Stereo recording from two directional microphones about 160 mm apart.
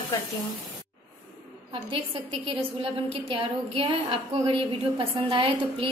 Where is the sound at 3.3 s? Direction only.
35° right (ahead or behind).